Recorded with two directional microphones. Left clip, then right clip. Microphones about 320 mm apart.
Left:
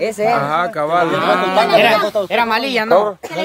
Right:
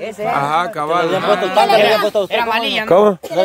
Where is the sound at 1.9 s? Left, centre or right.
Right.